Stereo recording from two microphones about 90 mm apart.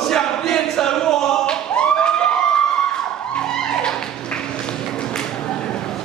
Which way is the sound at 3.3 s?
10° left (ahead or behind).